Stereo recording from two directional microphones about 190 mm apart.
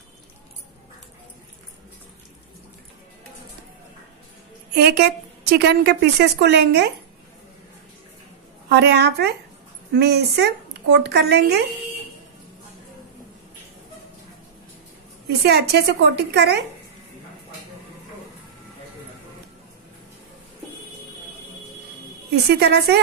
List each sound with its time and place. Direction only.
4.7 s speech: 60° right (ahead or behind)
8.6 s speech: 60° right (ahead or behind)
15.4 s speech: 60° right (ahead or behind)
22.3 s speech: 60° right (ahead or behind)